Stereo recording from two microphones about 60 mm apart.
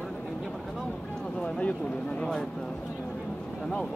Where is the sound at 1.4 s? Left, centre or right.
Left.